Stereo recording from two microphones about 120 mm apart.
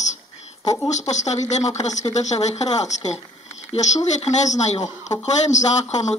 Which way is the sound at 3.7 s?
55° left (ahead or behind).